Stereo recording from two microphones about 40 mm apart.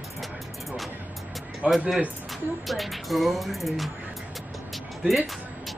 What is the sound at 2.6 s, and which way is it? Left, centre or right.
Speech, centre.